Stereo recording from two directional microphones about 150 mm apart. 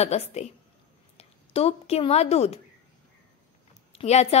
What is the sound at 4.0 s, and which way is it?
Speech, 45° left (ahead or behind).